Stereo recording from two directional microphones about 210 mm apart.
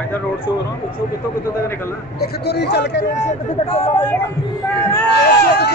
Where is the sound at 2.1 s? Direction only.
50° left (ahead or behind).